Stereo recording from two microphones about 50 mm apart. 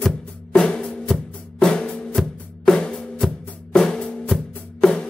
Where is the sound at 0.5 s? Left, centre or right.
Centre.